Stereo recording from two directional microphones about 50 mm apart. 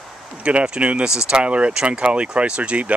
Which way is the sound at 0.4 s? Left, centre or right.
Right.